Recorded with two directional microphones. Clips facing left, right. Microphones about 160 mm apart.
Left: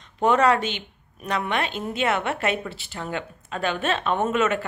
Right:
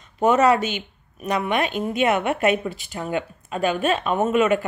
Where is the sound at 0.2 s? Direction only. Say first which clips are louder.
Right 2 dB; 10° right (ahead or behind).